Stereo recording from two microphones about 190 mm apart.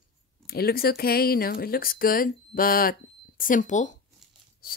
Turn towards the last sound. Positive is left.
turn(degrees=50)  # may be behind; listen again after turning